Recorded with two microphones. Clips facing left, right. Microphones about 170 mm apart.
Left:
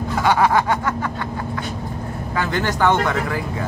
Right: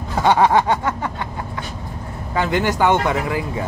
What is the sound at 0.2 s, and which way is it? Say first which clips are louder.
Speech: right 2 dB; 25° right (ahead or behind).